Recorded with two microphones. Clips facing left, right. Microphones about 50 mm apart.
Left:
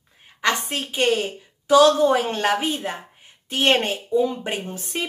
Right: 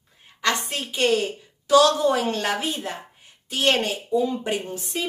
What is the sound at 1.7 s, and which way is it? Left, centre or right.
A woman's voice, left.